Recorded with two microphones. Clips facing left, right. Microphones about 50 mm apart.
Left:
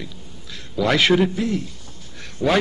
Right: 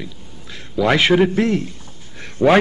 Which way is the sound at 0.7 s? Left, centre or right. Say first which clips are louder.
Right 3 dB; right.